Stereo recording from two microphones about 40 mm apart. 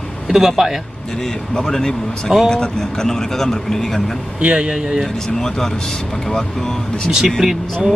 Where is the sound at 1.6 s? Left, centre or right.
Centre.